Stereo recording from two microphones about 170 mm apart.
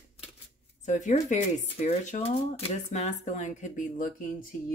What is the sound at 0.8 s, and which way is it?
Speech, 45° left (ahead or behind).